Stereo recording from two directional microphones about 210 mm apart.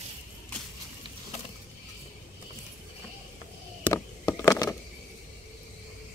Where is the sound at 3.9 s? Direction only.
15° left (ahead or behind).